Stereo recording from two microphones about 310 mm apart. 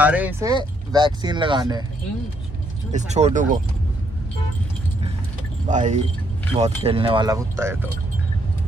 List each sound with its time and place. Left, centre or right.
0.0 s speech: centre
2.9 s speech: right
5.7 s speech: right; by 7.9 s centre